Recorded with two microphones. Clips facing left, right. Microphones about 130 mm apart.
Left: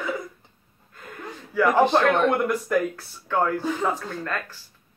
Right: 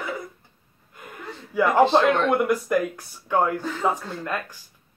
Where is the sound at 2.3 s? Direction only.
5° right (ahead or behind).